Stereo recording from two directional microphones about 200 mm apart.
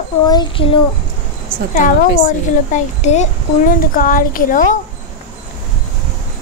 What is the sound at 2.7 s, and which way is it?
A child's voice, 35° left (ahead or behind).